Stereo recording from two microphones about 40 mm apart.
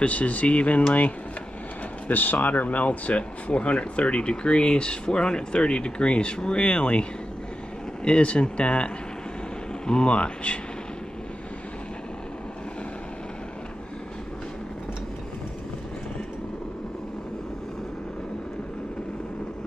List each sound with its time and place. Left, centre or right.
0.0 s speech: left
2.0 s speech: left